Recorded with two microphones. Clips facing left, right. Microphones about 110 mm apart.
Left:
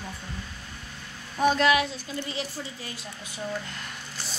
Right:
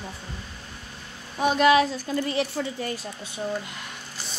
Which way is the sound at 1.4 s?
10° right (ahead or behind).